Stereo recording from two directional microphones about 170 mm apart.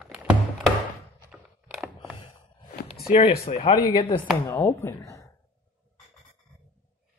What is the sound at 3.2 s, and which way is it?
Speech, 40° left (ahead or behind).